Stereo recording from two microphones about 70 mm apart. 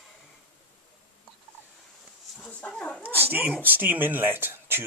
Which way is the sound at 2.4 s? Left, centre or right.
Centre.